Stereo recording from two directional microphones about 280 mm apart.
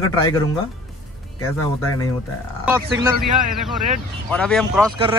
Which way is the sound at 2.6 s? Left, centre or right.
Centre.